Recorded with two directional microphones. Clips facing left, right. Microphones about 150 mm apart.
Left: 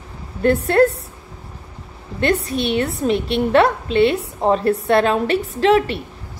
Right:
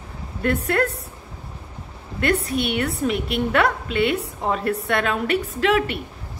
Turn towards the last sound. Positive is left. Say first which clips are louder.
# left 5 dB
turn(degrees=30)  # may be behind; listen again after turning